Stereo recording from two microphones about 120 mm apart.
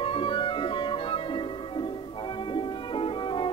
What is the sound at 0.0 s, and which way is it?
Music, 45° left (ahead or behind).